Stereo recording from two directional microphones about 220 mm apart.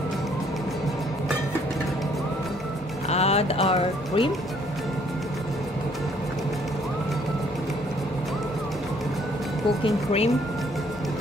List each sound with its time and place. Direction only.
3.1 s speech: 30° left (ahead or behind)
9.8 s speech: 30° left (ahead or behind)